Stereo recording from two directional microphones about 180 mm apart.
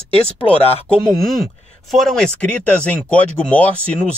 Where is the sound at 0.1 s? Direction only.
30° left (ahead or behind).